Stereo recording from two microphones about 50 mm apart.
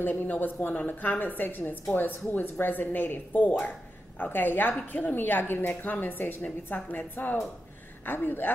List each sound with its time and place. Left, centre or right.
0.0 s a woman's voice: left
6.4 s a woman's voice: left